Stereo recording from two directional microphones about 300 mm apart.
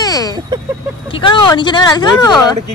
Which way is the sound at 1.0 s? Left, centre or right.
Centre.